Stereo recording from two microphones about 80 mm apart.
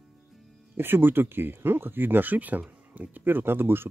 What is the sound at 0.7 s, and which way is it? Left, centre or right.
Speech, right.